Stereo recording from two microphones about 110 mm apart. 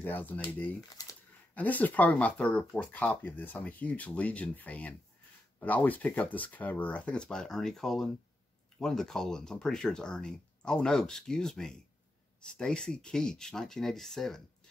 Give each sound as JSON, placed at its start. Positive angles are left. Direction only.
{"t": 0.0, "sound": "speech", "side_deg": 15}